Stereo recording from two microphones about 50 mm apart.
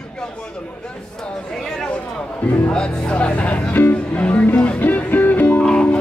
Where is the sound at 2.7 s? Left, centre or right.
Centre.